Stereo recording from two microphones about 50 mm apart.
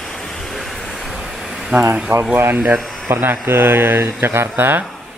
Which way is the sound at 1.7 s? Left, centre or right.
Right.